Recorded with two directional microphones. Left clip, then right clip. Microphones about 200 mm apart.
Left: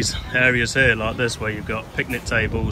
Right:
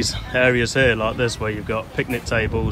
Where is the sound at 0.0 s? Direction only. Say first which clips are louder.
Even; 10° right (ahead or behind).